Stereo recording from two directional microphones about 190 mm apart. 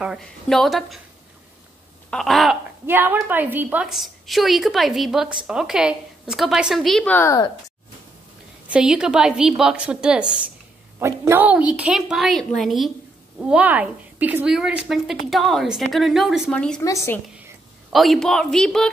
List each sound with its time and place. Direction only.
0.0 s a woman's voice: centre (ahead or behind)
2.0 s speech: centre (ahead or behind)
2.9 s a woman's voice: 10° right (ahead or behind); by 7.5 s 15° left (ahead or behind)
8.6 s a woman's voice: 5° right (ahead or behind)
16.8 s speech: 15° left (ahead or behind)
17.9 s a woman's voice: centre (ahead or behind)